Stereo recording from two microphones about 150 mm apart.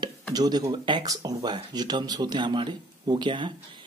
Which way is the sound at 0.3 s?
25° right (ahead or behind).